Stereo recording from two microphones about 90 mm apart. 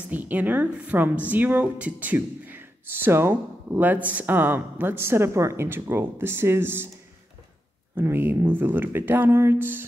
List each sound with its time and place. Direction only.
0.1 s a woman's voice: 20° right (ahead or behind)
7.9 s a woman's voice: 25° right (ahead or behind)